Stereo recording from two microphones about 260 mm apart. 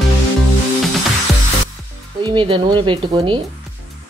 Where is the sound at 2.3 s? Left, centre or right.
Centre.